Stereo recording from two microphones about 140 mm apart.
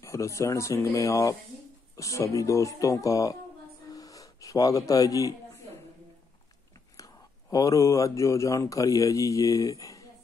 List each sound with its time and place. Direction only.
0.0 s speech: 20° left (ahead or behind)
3.9 s a sound: 25° left (ahead or behind)
7.0 s speech: 25° left (ahead or behind)